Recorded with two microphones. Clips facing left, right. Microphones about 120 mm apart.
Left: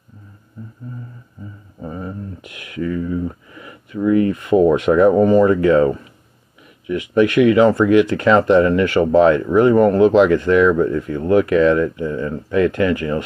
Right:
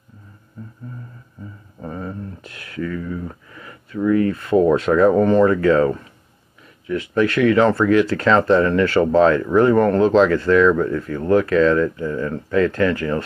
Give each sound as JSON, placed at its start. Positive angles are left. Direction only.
{"t": 1.9, "sound": "a sound", "side_deg": 15}
{"t": 2.8, "sound": "speech", "side_deg": 30}
{"t": 3.3, "sound": "speech", "side_deg": 15}